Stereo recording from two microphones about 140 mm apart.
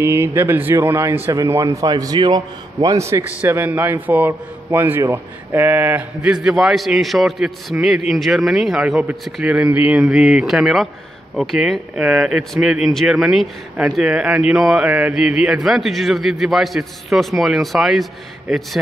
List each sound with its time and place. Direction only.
0.0 s a man's voice: 20° right (ahead or behind); by 18.0 s centre (ahead or behind)